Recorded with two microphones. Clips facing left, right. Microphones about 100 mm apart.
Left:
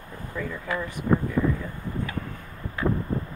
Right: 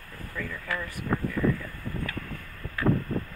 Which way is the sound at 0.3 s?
20° left (ahead or behind).